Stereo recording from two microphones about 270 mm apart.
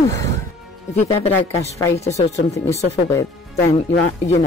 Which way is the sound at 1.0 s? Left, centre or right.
Left.